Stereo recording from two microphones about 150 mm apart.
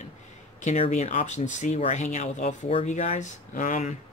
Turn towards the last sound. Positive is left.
turn(degrees=55)  # may be behind; listen again after turning